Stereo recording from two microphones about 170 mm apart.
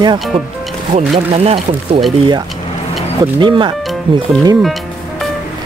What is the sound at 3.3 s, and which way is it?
Speech, 30° right (ahead or behind).